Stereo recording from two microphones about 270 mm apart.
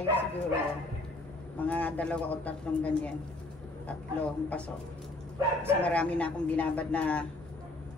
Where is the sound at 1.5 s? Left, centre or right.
Centre.